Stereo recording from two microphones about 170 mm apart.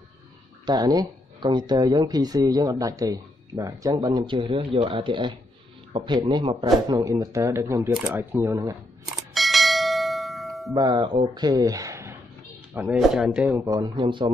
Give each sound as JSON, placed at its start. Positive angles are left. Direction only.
{"t": 0.7, "sound": "speech", "side_deg": -25}
{"t": 9.3, "sound": "bell", "side_deg": 0}
{"t": 10.7, "sound": "speech", "side_deg": -25}
{"t": 12.8, "sound": "speech", "side_deg": -5}
{"t": 13.7, "sound": "speech", "side_deg": -25}